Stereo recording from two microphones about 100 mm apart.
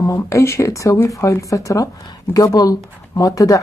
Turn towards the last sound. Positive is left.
turn(degrees=35)  # may be behind; listen again after turning